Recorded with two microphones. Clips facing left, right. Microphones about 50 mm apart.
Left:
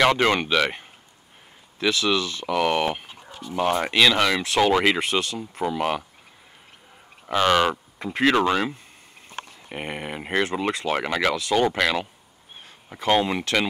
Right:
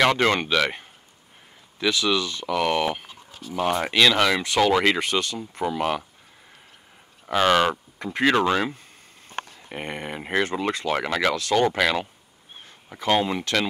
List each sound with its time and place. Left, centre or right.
0.0 s speech: centre
2.0 s speech: left
2.4 s speech: centre
3.8 s speech: centre
7.2 s speech: centre
11.3 s speech: centre
11.6 s speech: centre